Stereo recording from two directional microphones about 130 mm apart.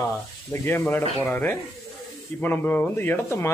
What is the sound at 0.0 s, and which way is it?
Speech, 20° left (ahead or behind).